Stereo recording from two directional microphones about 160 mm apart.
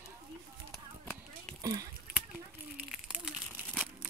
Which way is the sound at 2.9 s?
5° right (ahead or behind).